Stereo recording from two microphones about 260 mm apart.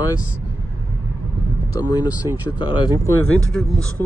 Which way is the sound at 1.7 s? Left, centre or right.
Centre.